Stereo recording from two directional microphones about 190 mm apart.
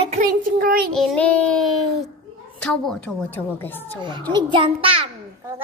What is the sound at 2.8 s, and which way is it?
A woman's voice, 5° left (ahead or behind).